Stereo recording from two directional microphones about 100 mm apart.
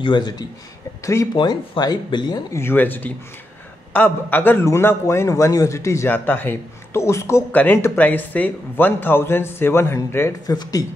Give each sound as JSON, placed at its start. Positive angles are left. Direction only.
{"t": 0.0, "sound": "speech", "side_deg": 50}
{"t": 1.0, "sound": "speech", "side_deg": 30}
{"t": 1.3, "sound": "speech", "side_deg": 50}
{"t": 2.5, "sound": "a man's voice", "side_deg": 25}
{"t": 6.0, "sound": "a man's voice", "side_deg": 20}
{"t": 7.5, "sound": "a man's voice", "side_deg": 15}
{"t": 10.4, "sound": "speech", "side_deg": 40}